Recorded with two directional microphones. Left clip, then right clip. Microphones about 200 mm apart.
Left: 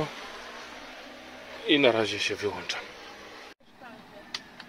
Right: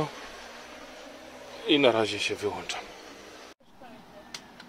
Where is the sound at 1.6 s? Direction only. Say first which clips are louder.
Even; centre (ahead or behind).